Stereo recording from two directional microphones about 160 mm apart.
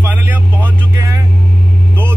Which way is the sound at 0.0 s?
10° right (ahead or behind).